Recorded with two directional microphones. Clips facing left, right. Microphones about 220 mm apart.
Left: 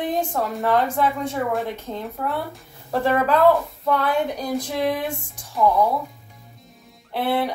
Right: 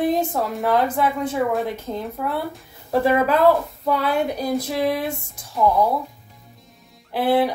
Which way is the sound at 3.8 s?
10° right (ahead or behind).